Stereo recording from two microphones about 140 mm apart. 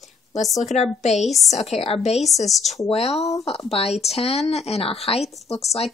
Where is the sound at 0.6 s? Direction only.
55° left (ahead or behind).